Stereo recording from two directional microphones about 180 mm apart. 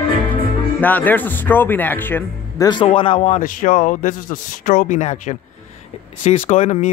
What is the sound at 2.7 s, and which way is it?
A man's voice, 30° left (ahead or behind).